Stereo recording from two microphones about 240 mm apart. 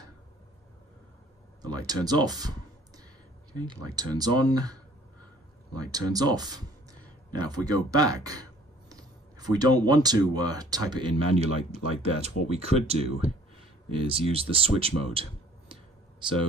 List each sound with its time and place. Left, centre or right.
1.6 s speech: centre
3.5 s speech: centre
15.7 s a sound: centre